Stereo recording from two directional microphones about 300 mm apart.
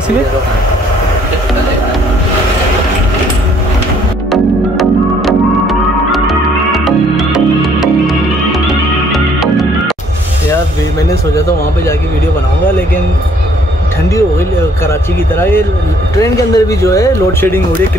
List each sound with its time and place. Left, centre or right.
4.3 s music: centre
14.9 s speech: centre